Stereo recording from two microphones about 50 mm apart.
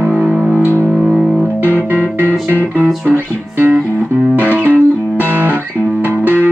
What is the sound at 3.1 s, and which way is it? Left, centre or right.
Music, right.